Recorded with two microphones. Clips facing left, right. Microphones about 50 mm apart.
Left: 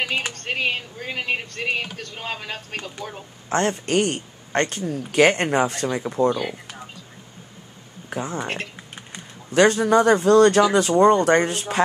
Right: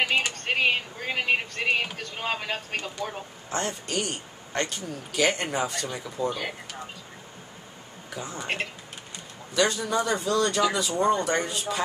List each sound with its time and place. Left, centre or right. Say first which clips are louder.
0.3 s speech: even; centre
3.4 s speech: left 9 dB; left
8.1 s speech: left 8 dB; left
9.5 s speech: left 9 dB; left